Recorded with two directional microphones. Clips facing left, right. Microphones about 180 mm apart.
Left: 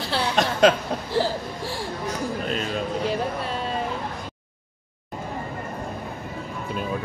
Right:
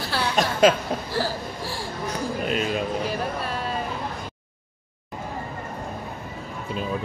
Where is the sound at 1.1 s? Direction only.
20° left (ahead or behind).